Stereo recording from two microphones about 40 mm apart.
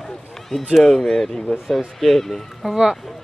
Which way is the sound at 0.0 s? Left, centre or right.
Centre.